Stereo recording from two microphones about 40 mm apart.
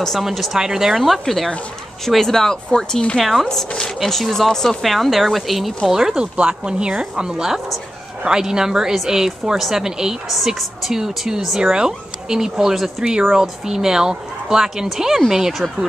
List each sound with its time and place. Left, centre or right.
0.5 s a woman's voice: centre
0.9 s speech: centre
3.2 s speech: centre
3.4 s speech: centre
4.0 s speech: centre
5.9 s a woman's voice: centre
6.1 s a woman's voice: right; by 15.9 s centre